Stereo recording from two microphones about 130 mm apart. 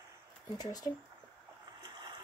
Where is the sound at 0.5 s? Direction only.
30° left (ahead or behind).